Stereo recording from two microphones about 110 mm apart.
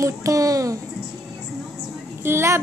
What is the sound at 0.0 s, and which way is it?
Speech, 30° right (ahead or behind).